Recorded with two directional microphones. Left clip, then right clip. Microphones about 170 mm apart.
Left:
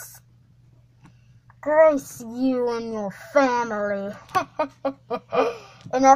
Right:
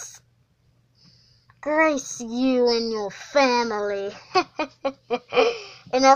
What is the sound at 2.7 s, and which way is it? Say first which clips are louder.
Speech: right 3 dB; 15° right (ahead or behind).